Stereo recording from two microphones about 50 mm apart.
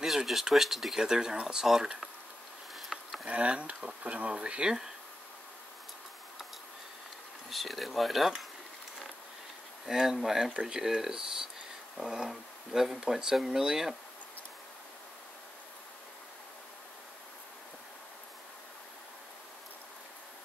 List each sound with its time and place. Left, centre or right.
0.0 s speech: centre
2.7 s insect: centre
3.3 s speech: right
7.4 s speech: centre
9.8 s speech: centre